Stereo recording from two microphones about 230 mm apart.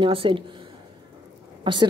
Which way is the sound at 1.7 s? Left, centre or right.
Right.